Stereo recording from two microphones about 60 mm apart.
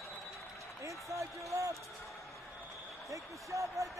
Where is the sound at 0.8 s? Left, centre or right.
Right.